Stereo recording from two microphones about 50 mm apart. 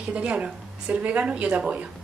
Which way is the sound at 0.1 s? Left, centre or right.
Right.